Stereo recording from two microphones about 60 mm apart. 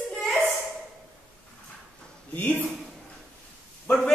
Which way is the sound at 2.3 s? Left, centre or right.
Left.